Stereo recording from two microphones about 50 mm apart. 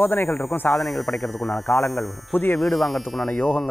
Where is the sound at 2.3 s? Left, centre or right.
Left.